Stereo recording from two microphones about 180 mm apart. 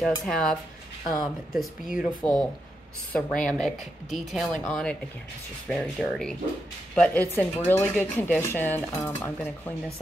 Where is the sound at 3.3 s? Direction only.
5° left (ahead or behind).